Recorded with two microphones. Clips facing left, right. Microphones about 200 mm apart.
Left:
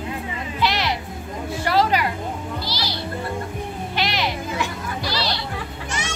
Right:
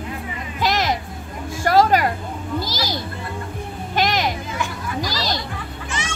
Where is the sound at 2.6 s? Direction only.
45° right (ahead or behind).